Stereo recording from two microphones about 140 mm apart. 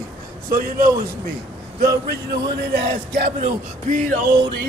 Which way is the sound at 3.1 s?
80° right.